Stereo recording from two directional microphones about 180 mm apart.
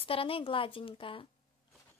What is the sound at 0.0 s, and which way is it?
Speech, 30° left (ahead or behind).